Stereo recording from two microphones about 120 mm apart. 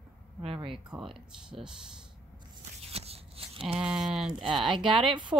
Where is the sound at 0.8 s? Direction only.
10° right (ahead or behind).